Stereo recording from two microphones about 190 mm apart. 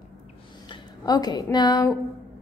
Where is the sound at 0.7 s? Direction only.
20° left (ahead or behind).